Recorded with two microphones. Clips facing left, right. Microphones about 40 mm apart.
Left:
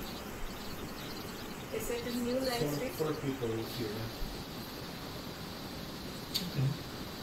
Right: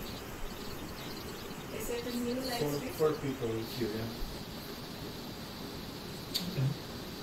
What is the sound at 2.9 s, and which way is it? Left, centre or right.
Speech, right.